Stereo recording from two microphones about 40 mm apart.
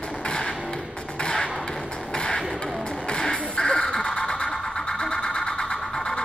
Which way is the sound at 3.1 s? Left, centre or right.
Centre.